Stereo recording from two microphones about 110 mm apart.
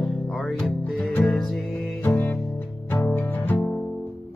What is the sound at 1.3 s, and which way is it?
Music, centre (ahead or behind).